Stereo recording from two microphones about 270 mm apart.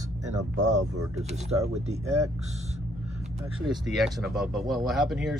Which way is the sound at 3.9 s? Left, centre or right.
Centre.